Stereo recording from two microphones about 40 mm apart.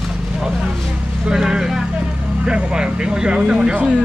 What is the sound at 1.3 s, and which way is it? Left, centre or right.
Speech, centre.